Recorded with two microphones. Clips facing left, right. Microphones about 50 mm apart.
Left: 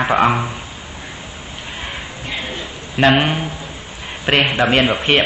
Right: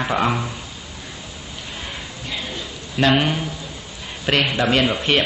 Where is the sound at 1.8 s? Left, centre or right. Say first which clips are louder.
Left 4 dB; left.